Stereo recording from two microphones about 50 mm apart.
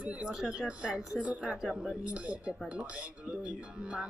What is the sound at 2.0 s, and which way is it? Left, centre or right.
Speech, right.